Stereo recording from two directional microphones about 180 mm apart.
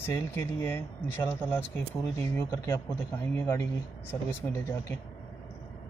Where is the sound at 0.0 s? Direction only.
15° left (ahead or behind).